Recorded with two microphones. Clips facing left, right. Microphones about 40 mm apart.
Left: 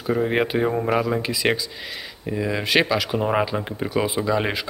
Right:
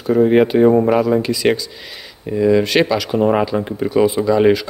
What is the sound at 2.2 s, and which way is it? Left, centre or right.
Speech, centre.